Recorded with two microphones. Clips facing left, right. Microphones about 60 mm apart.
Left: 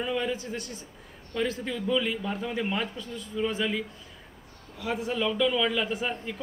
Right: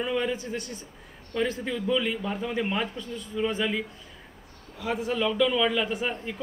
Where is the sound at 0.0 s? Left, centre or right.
Centre.